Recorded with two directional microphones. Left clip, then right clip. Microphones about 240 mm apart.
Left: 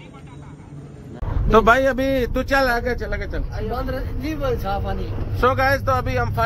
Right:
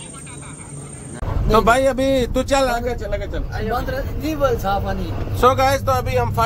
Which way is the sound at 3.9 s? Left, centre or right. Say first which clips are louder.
Right 4 dB; right.